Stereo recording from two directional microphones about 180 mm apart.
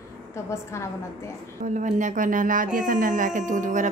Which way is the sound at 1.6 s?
45° right (ahead or behind).